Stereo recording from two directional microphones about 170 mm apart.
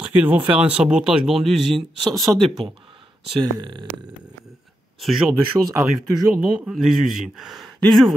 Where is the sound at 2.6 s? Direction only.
30° right (ahead or behind).